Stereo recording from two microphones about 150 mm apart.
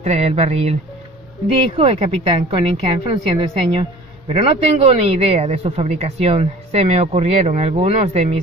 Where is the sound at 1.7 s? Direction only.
40° right (ahead or behind).